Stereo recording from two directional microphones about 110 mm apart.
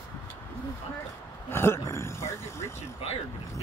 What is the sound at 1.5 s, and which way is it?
Speech, 20° left (ahead or behind).